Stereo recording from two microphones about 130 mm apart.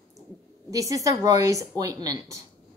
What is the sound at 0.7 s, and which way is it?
Speech, 25° right (ahead or behind).